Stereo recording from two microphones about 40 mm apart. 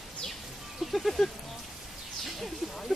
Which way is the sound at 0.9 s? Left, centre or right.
Centre.